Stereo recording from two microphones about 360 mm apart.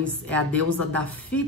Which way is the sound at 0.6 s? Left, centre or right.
Right.